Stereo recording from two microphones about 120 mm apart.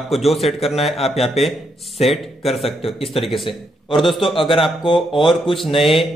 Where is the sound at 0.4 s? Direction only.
60° left (ahead or behind).